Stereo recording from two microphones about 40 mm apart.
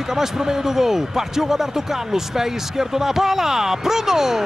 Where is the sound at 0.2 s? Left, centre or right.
Centre.